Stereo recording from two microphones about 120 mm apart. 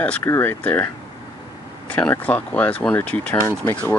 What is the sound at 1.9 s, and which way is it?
Speech, 10° left (ahead or behind).